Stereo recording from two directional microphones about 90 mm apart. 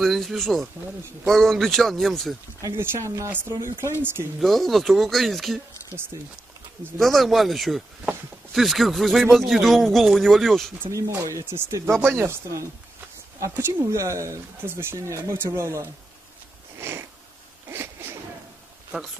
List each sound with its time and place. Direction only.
0.0 s a man's voice: centre (ahead or behind)
2.8 s speech: 30° right (ahead or behind)
4.4 s a man's voice: centre (ahead or behind)
7.0 s a man's voice: centre (ahead or behind)
10.9 s speech: 35° right (ahead or behind)
16.7 s sniff: 25° right (ahead or behind)
17.6 s a sound: 30° right (ahead or behind)